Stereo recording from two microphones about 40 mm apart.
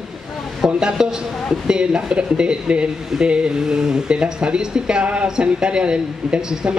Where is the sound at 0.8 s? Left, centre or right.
Centre.